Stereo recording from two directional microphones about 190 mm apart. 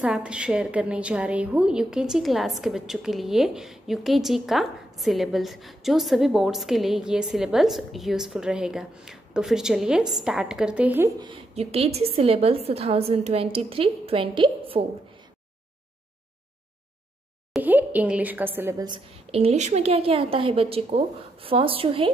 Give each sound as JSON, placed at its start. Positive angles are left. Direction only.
{"t": 0.0, "sound": "a woman's voice", "side_deg": -5}
{"t": 11.5, "sound": "a woman's voice", "side_deg": -30}
{"t": 17.5, "sound": "a woman's voice", "side_deg": -10}
{"t": 19.3, "sound": "a woman's voice", "side_deg": -35}